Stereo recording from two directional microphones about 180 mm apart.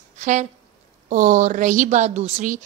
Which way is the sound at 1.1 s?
45° right (ahead or behind).